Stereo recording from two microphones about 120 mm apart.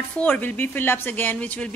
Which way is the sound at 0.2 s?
15° left (ahead or behind).